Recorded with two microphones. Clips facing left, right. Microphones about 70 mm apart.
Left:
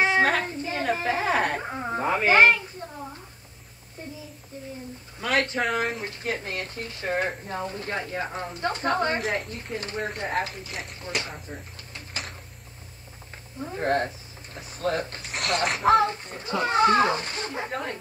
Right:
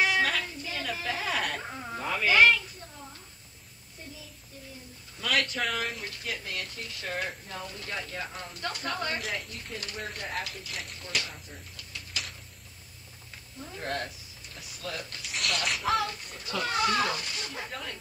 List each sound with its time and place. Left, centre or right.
0.0 s a sound: left
5.2 s speech: left
9.2 s speech: left
9.5 s speech: left
13.6 s speech: left